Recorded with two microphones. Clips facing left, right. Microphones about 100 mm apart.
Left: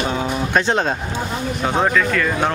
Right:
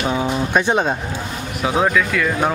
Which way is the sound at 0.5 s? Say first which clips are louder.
Even; 10° right (ahead or behind).